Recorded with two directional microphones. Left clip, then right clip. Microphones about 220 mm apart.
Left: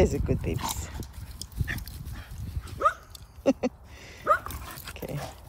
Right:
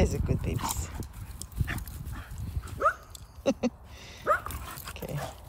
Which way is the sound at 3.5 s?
15° right (ahead or behind).